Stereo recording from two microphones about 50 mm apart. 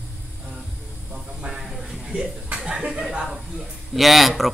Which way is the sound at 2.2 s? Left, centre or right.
Right.